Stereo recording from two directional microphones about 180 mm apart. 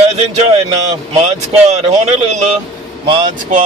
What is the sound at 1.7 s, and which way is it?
Speech, 35° right (ahead or behind).